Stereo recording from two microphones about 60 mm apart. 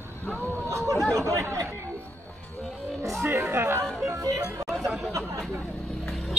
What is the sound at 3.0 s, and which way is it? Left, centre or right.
Chatter, right.